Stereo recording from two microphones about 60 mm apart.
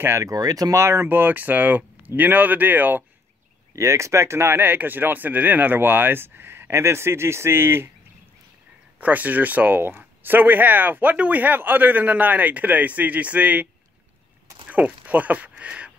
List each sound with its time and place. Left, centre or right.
0.2 s speech: right
0.7 s speech: right
3.7 s speech: right
8.9 s speech: right
14.7 s speech: right
15.5 s a sound: centre